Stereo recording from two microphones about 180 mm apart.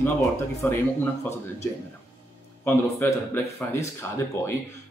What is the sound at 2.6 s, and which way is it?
Speech, 10° left (ahead or behind).